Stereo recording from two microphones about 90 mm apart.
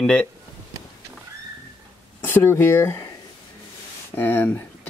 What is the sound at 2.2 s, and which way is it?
Speech, 20° left (ahead or behind).